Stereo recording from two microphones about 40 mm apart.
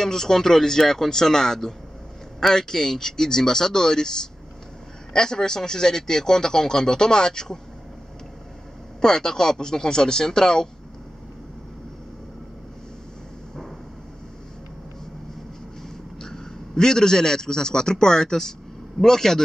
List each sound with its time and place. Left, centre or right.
0.0 s speech: centre
9.0 s speech: centre
16.2 s a man's voice: centre